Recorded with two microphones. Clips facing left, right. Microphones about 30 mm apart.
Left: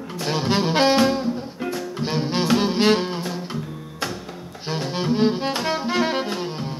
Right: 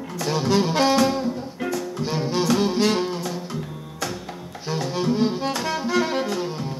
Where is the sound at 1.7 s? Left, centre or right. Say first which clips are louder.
Even; left.